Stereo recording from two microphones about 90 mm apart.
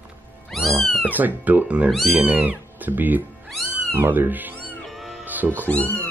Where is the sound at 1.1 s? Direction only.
20° right (ahead or behind).